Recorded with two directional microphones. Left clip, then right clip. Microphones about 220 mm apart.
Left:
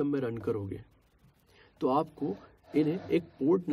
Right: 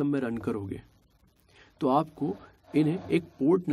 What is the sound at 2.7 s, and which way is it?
Speech, 35° right (ahead or behind).